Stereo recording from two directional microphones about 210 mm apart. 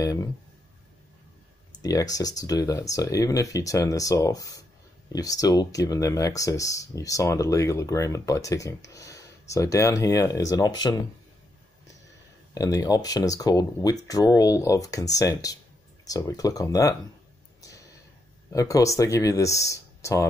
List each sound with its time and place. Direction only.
0.0 s speech: 15° left (ahead or behind)
1.8 s speech: 15° left (ahead or behind)
12.5 s speech: 15° left (ahead or behind)
17.6 s a sound: 15° left (ahead or behind)
18.5 s speech: 15° left (ahead or behind)